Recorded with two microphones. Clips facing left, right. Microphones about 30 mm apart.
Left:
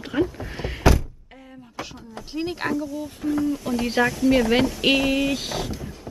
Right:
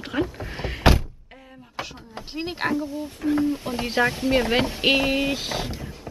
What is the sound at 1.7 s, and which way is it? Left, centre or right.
Speech, right.